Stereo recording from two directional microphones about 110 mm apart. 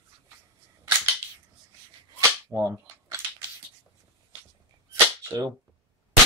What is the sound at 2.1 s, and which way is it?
Cap gun, 25° right (ahead or behind).